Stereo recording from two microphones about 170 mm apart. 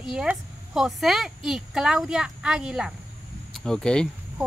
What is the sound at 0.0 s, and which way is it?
A woman's voice, 5° right (ahead or behind).